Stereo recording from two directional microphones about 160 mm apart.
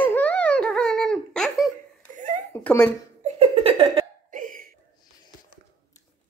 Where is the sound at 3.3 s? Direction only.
35° right (ahead or behind).